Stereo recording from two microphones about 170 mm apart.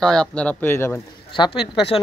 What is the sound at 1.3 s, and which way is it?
Speech, 30° left (ahead or behind).